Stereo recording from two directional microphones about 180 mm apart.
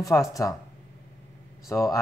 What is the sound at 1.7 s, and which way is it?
Speech, 15° left (ahead or behind).